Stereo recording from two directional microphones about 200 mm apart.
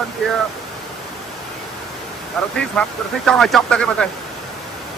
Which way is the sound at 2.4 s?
5° left (ahead or behind).